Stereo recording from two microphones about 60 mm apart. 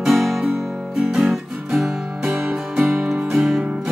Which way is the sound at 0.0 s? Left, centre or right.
Centre.